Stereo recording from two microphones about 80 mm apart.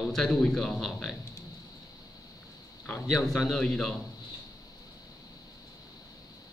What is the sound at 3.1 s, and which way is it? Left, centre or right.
Speech, centre.